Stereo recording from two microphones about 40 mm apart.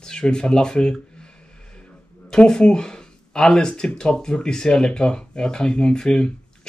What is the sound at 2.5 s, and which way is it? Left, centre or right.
Speech, centre.